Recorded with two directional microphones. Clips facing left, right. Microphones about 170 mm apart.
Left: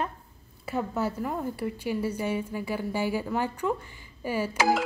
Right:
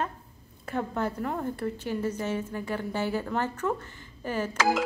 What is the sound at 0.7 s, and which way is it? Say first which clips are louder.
A woman's voice: left 1 dB; 10° left (ahead or behind).